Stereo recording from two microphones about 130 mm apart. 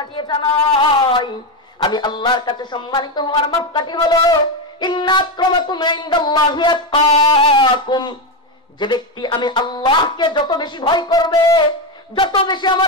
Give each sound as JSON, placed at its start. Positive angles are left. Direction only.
{"t": 0.3, "sound": "speech", "side_deg": 40}